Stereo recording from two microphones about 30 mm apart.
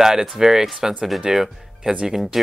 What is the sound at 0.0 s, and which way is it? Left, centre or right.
Speech, centre.